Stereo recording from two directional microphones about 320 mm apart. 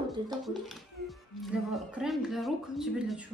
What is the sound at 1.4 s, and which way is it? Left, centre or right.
Speech, centre.